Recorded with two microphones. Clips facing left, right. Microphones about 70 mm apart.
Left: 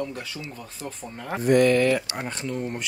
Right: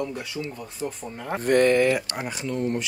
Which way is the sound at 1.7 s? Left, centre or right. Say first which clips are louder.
Even; centre.